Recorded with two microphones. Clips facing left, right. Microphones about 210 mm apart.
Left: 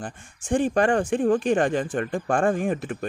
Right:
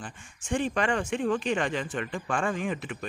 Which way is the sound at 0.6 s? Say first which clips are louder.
Left 7 dB; 50° left (ahead or behind).